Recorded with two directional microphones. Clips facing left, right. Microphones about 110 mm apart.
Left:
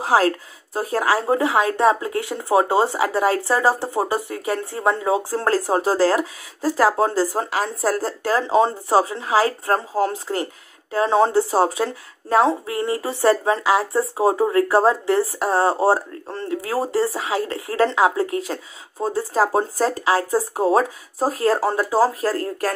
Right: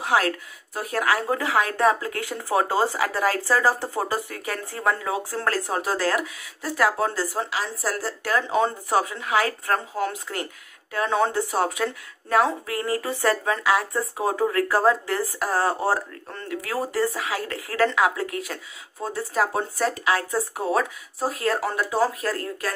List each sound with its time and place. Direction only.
0.0 s speech: 35° left (ahead or behind)
7.3 s speech: 45° left (ahead or behind)